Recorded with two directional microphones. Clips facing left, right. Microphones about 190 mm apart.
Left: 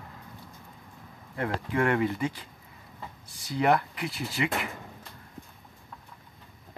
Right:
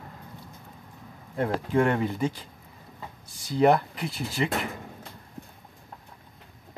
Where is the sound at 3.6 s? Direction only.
35° right (ahead or behind).